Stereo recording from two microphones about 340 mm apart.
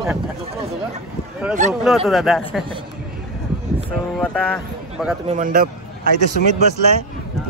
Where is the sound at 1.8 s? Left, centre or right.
Centre.